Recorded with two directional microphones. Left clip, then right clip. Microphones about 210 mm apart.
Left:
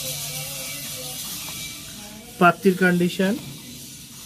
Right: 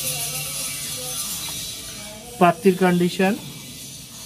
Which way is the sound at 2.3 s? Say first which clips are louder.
Right 1 dB; 10° left (ahead or behind).